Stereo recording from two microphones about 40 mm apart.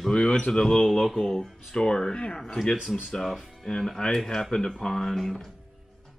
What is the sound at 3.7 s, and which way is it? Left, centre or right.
Speech, centre.